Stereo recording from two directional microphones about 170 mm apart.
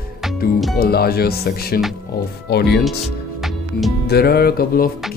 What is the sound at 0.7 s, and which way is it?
Speech, 65° left (ahead or behind).